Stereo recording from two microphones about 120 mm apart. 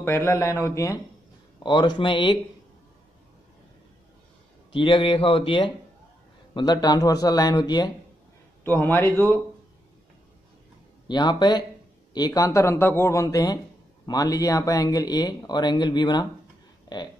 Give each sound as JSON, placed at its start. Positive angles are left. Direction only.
{"t": 0.0, "sound": "a man's voice", "side_deg": 20}
{"t": 1.6, "sound": "speech", "side_deg": 40}
{"t": 4.7, "sound": "speech", "side_deg": 45}
{"t": 6.5, "sound": "speech", "side_deg": 35}
{"t": 8.6, "sound": "a man's voice", "side_deg": 15}
{"t": 11.1, "sound": "a man's voice", "side_deg": 40}